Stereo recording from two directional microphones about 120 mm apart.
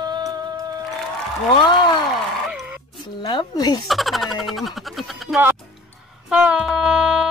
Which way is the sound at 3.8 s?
Centre (ahead or behind).